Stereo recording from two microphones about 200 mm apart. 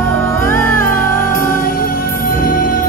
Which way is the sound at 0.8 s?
45° left (ahead or behind).